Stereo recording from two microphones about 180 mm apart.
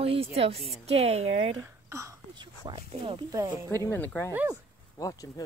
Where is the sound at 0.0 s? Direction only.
30° right (ahead or behind).